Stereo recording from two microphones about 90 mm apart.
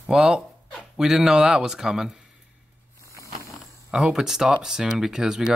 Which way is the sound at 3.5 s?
10° right (ahead or behind).